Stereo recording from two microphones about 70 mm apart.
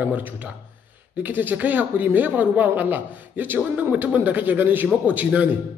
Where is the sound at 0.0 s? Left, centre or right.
Right.